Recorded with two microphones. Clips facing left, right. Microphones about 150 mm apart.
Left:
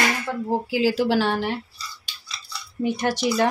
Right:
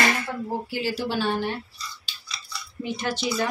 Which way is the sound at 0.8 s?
90° left.